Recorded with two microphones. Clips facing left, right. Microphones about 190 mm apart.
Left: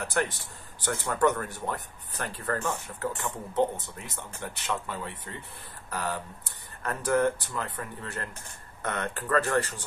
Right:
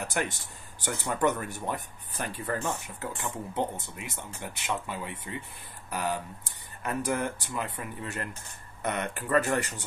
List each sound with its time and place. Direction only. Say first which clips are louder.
0.0 s speech: left 2 dB; 15° right (ahead or behind)